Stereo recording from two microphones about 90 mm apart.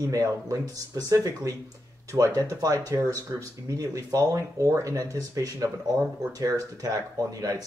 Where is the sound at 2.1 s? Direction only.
20° right (ahead or behind).